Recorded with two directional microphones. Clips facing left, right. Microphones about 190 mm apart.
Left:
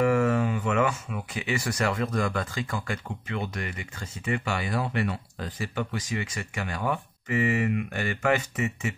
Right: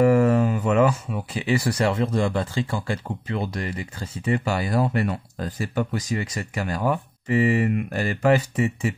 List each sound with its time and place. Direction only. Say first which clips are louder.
0.0 s speech: right 5 dB; 35° right (ahead or behind)